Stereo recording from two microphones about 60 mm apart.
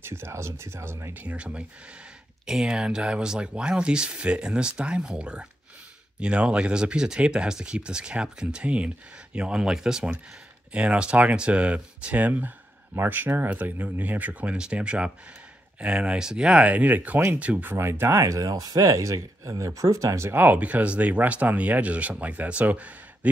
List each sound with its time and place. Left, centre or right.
0.0 s speech: right
1.1 s speech: right
2.4 s speech: centre; by 17.6 s right
17.6 s speech: right
20.3 s speech: right